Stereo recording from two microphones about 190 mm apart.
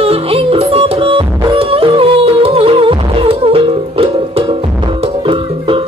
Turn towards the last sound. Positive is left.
turn(degrees=-30)  # may be behind; listen again after turning